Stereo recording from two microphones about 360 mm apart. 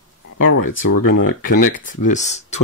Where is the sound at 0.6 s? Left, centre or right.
Left.